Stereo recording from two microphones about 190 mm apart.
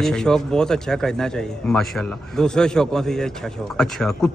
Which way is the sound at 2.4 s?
5° left (ahead or behind).